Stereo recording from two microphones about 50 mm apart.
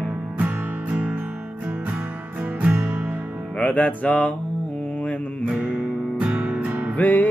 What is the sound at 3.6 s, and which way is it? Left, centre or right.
Music, left.